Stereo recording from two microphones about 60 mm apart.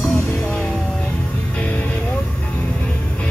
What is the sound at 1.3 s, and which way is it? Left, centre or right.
Music, left.